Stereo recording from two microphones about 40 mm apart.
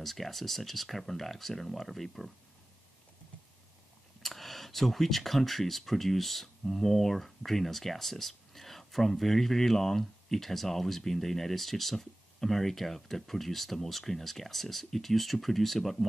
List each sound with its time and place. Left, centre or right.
0.0 s speech: centre
4.2 s speech: centre